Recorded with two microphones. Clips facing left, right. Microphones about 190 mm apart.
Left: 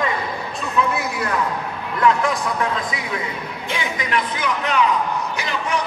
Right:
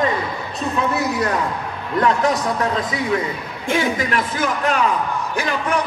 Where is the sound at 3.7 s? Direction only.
45° right (ahead or behind).